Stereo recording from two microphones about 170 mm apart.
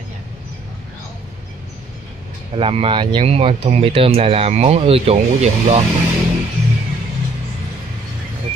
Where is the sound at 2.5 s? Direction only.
35° right (ahead or behind).